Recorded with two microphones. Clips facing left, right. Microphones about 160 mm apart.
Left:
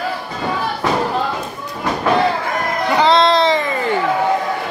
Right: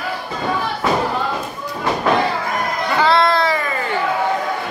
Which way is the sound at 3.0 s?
20° left (ahead or behind).